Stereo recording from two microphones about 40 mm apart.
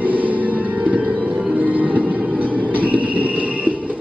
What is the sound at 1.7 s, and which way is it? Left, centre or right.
Music, right.